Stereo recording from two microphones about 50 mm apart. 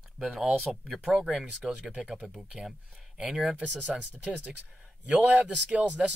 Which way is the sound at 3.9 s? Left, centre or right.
Right.